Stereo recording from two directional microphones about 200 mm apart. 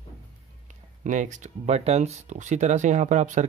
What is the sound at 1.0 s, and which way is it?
Speech, 40° right (ahead or behind).